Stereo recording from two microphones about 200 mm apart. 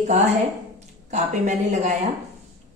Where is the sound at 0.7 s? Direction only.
35° right (ahead or behind).